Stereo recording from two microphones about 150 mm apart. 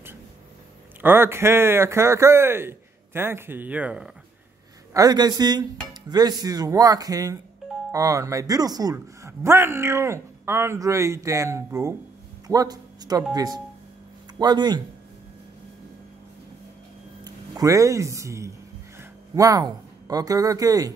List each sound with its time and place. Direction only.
1.0 s a man's voice: 15° right (ahead or behind)
4.9 s a man's voice: 25° right (ahead or behind)
17.2 s speech: 25° right (ahead or behind)